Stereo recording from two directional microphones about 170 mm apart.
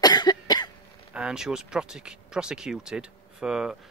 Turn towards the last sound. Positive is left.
turn(degrees=-5)  # may be behind; listen again after turning